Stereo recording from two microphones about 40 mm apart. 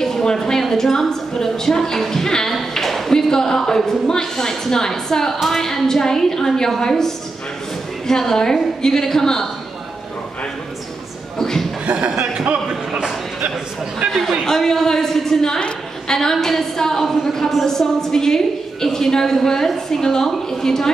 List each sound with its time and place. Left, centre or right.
0.0 s a woman's voice: centre
11.3 s a sound: centre
11.8 s speech: right
14.4 s a woman's voice: centre